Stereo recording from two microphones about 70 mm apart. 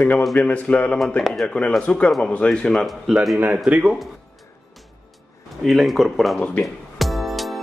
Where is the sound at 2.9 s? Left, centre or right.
Centre.